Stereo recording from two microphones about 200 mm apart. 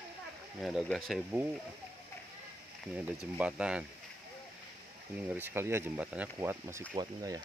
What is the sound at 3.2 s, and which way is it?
Speech, 5° right (ahead or behind).